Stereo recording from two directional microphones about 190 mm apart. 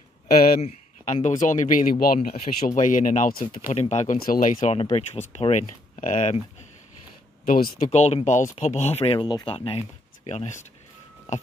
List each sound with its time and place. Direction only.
0.3 s speech: 50° left (ahead or behind)
0.6 s speech: 40° left (ahead or behind)
3.7 s speech: 35° left (ahead or behind)
7.4 s speech: 45° left (ahead or behind)
8.0 s speech: 35° left (ahead or behind)